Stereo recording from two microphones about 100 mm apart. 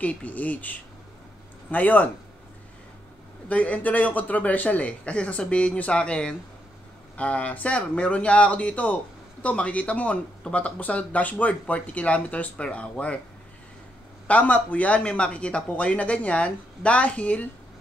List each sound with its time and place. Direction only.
0.0 s speech: 15° left (ahead or behind)
3.4 s speech: 15° left (ahead or behind)
14.2 s speech: 15° left (ahead or behind)